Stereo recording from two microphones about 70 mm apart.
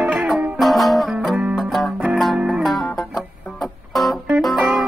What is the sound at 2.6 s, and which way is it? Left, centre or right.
Music, centre.